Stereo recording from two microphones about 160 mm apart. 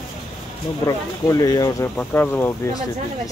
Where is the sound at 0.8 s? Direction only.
20° left (ahead or behind).